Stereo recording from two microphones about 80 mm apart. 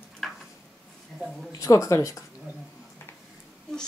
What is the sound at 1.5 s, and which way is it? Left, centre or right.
Speech, left.